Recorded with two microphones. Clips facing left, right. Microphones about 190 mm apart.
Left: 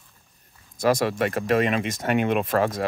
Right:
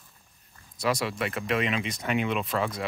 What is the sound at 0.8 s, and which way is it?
Speech, 45° left (ahead or behind).